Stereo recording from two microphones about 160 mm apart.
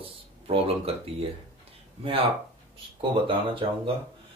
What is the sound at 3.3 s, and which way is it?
Speech, 30° right (ahead or behind).